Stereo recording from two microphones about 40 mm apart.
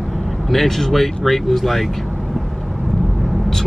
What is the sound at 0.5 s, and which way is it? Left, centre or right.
Speech, centre.